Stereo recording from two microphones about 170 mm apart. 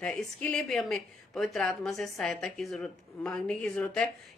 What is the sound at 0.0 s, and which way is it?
A woman's voice, 5° left (ahead or behind).